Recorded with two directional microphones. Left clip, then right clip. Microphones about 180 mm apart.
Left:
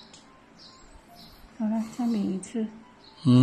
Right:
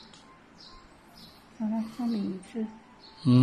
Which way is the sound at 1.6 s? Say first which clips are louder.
Left 3 dB; 10° left (ahead or behind).